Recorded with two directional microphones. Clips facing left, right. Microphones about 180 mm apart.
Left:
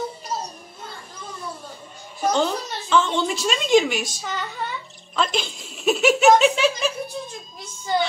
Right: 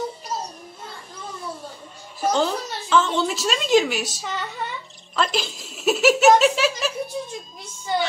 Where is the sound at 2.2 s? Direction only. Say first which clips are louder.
Even; centre (ahead or behind).